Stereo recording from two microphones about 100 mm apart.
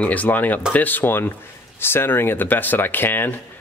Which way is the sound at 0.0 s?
15° left (ahead or behind).